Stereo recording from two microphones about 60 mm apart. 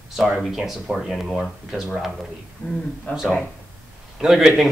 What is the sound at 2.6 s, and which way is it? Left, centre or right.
Speech, left.